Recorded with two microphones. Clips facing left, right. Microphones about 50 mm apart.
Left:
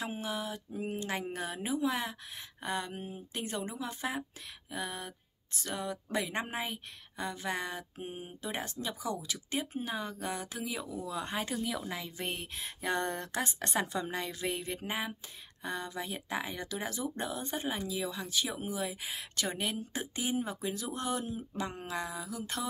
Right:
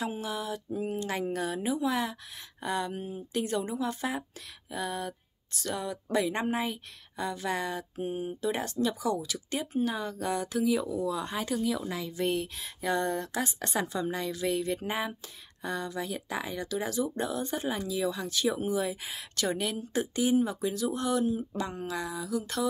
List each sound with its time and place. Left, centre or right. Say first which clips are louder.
0.1 s a woman's voice: right 3 dB; left
14.7 s a woman's voice: right 5 dB; centre
15.6 s a woman's voice: right 4 dB; centre
19.5 s speech: right 5 dB; centre